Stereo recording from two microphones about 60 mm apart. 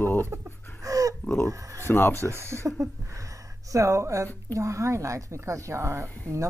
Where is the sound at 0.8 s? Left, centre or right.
Right.